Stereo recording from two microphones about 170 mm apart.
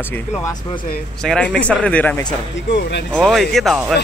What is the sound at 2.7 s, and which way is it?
Speech, 90° left.